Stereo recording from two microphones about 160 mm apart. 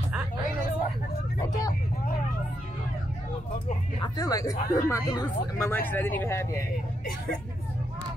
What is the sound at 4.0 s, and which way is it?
Speech, 20° left (ahead or behind).